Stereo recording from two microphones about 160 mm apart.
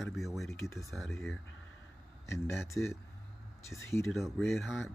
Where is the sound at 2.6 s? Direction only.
15° left (ahead or behind).